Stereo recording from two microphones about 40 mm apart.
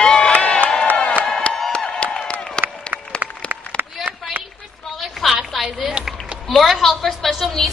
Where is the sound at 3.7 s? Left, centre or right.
Right.